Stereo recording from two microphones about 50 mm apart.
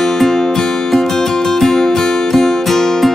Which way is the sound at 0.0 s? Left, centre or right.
Centre.